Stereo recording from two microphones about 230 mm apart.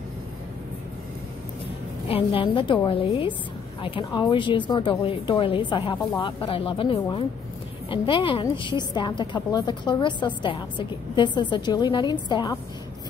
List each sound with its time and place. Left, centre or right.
2.0 s a woman's voice: left